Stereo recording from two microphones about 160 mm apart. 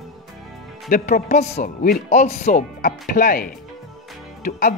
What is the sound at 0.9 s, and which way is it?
Speech, 55° left (ahead or behind).